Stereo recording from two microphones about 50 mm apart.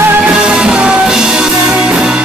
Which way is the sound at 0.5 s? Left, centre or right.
Centre.